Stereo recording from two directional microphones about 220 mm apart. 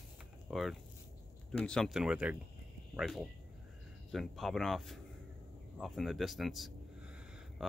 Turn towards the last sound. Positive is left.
turn(degrees=-5)  # may be behind; listen again after turning